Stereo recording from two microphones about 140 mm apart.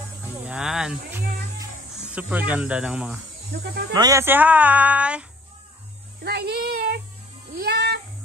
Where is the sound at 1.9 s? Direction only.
10° right (ahead or behind).